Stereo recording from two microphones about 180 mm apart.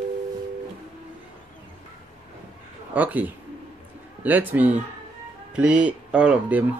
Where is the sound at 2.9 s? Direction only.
10° right (ahead or behind).